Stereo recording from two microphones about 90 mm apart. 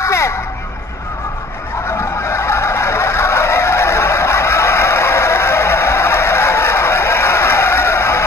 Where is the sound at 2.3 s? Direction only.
30° left (ahead or behind).